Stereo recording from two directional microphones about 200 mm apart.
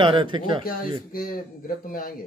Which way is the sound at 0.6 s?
45° left (ahead or behind).